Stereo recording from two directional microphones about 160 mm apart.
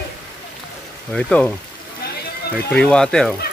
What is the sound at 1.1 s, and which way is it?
Speech, 5° left (ahead or behind).